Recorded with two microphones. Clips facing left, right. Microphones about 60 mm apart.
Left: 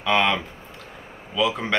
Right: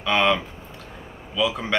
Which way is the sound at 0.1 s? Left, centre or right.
Centre.